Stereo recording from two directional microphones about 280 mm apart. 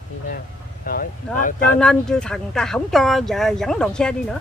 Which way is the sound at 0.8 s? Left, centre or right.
Left.